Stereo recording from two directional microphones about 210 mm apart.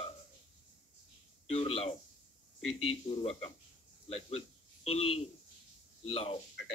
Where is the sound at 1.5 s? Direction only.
30° left (ahead or behind).